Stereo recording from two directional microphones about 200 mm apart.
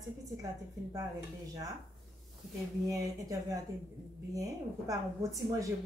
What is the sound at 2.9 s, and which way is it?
A woman's voice, 15° right (ahead or behind).